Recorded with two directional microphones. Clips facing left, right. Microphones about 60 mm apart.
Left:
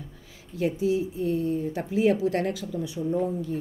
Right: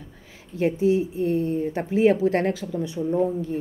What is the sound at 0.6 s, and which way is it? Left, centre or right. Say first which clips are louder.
A woman's voice: right 4 dB; right.